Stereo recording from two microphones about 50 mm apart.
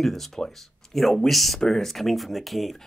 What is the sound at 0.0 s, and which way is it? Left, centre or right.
Speech, centre.